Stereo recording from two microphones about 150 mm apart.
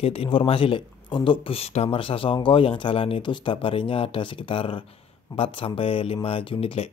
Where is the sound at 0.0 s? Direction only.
40° left (ahead or behind).